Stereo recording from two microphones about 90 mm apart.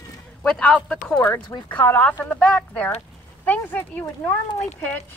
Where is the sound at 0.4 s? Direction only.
10° left (ahead or behind).